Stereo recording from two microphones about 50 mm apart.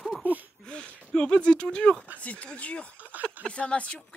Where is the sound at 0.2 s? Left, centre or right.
Right.